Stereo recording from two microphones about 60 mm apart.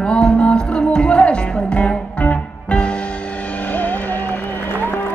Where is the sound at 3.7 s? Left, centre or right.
Left.